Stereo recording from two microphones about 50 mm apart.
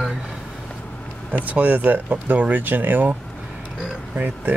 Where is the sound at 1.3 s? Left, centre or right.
Right.